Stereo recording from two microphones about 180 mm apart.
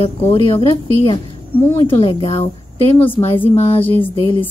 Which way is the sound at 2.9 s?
10° left (ahead or behind).